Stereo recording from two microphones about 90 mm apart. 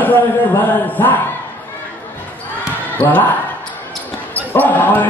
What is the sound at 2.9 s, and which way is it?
Speech, 20° left (ahead or behind).